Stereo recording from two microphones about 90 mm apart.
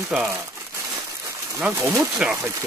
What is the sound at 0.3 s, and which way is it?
Crumpling, 30° right (ahead or behind).